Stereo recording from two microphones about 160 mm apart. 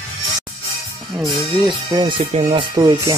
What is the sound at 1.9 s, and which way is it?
Speech, 25° right (ahead or behind).